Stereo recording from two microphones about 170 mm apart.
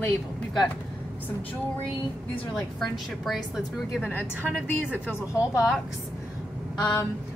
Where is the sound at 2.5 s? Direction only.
Centre (ahead or behind).